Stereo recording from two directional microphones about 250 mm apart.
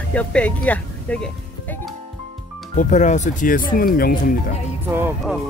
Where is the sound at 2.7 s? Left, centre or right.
Left.